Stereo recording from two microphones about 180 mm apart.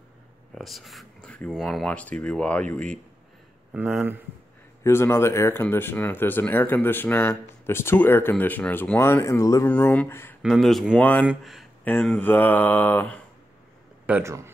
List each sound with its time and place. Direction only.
0.6 s speech: centre (ahead or behind)
3.7 s speech: 10° right (ahead or behind)
4.8 s speech: 15° left (ahead or behind)
10.4 s speech: centre (ahead or behind)
14.0 s speech: 10° right (ahead or behind)